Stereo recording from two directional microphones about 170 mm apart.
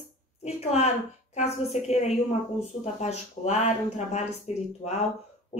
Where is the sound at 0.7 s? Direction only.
40° left (ahead or behind).